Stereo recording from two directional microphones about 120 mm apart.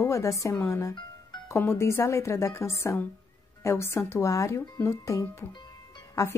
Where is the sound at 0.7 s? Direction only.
30° left (ahead or behind).